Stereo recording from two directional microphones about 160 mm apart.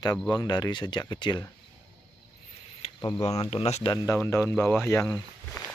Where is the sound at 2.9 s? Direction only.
25° left (ahead or behind).